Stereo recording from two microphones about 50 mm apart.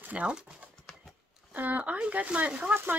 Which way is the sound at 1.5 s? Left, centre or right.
Right.